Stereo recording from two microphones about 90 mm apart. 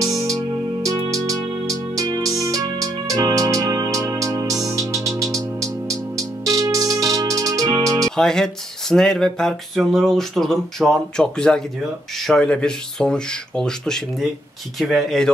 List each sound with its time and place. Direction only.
0.0 s music: 40° right (ahead or behind)
8.2 s speech: 5° left (ahead or behind)